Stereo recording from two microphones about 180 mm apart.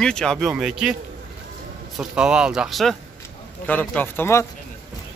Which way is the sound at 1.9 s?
5° right (ahead or behind).